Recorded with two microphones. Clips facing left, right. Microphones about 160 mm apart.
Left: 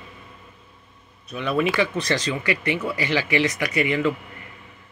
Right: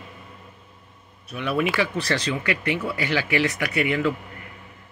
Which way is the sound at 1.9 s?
15° left (ahead or behind).